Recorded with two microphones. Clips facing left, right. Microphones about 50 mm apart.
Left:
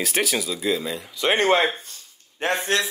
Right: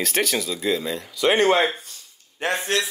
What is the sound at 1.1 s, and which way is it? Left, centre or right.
Speech, left.